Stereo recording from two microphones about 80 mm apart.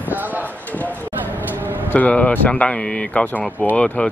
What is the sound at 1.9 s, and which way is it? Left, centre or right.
Speech, centre.